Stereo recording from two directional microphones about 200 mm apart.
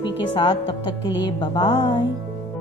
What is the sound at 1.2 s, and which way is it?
Music, 25° left (ahead or behind).